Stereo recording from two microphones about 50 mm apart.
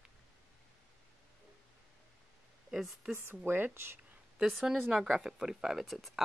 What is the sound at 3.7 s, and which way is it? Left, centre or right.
Speech, right.